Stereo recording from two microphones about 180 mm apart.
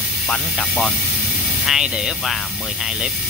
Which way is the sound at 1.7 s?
Centre (ahead or behind).